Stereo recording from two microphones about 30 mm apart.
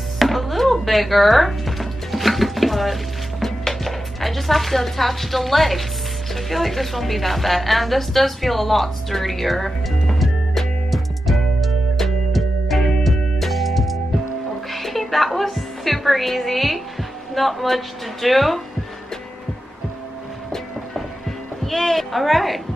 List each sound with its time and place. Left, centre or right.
0.2 s music: centre
3.6 s a woman's voice: centre
10.9 s music: centre
17.3 s a woman's voice: centre
21.6 s a woman's voice: centre